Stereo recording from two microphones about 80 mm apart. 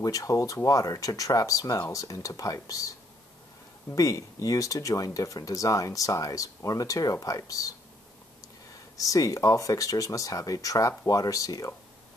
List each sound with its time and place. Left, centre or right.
0.0 s speech: left
3.9 s speech: left
8.9 s speech: left